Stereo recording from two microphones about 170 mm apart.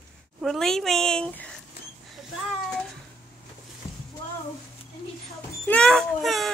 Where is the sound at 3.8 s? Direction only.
15° left (ahead or behind).